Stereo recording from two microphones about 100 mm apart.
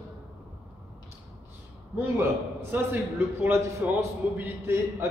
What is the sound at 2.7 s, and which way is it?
A man's voice, 20° right (ahead or behind).